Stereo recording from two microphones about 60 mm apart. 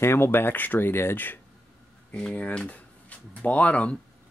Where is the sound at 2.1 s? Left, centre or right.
Centre.